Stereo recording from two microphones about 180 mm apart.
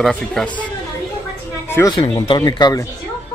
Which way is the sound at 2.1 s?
25° left (ahead or behind).